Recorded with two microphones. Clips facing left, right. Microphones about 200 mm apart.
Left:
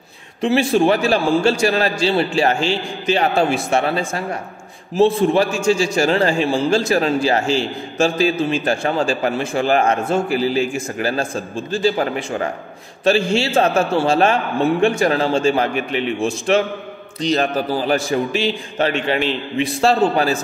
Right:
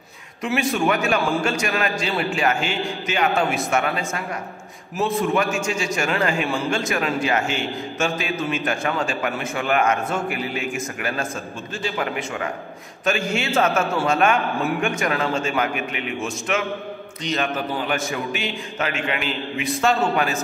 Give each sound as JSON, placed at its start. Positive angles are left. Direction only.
{"t": 0.4, "sound": "a man's voice", "side_deg": 30}